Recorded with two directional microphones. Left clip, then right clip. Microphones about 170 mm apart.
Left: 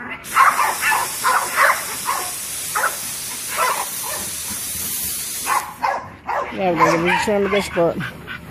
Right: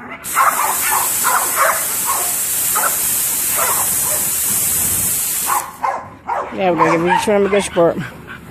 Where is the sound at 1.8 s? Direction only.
55° right (ahead or behind).